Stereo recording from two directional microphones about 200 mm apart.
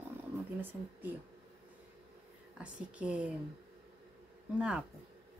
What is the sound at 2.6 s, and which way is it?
Speech, 5° right (ahead or behind).